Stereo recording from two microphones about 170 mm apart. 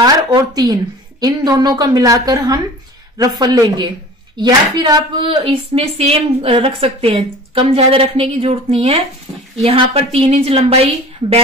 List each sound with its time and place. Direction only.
0.0 s a woman's voice: 20° right (ahead or behind)